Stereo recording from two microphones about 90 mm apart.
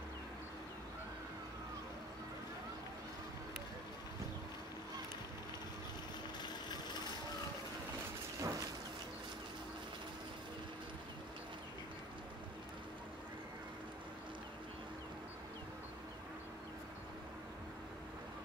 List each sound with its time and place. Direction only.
8.4 s thunder: 40° right (ahead or behind)